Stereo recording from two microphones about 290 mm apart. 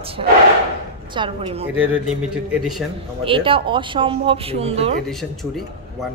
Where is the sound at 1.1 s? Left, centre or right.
Centre.